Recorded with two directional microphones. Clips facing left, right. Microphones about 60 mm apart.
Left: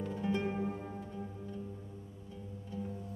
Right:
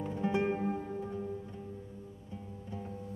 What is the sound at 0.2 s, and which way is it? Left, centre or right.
Music, right.